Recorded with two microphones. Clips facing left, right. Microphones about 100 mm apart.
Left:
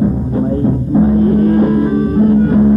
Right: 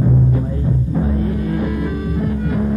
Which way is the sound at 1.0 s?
40° left (ahead or behind).